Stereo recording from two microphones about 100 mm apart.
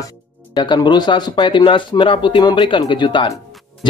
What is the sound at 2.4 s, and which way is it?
Speech, 45° left (ahead or behind).